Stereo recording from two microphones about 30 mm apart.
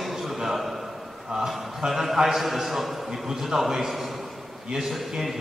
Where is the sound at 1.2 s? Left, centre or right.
Centre.